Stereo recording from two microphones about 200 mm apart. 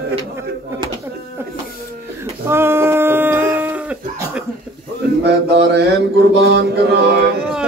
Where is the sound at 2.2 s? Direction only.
10° right (ahead or behind).